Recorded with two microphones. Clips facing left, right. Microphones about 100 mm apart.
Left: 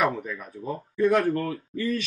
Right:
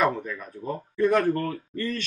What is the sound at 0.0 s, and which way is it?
Speech, 5° left (ahead or behind).